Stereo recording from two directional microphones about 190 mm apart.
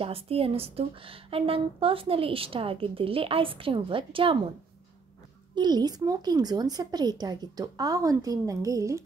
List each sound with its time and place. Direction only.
0.0 s a woman's voice: 30° right (ahead or behind)
5.5 s a woman's voice: 20° right (ahead or behind)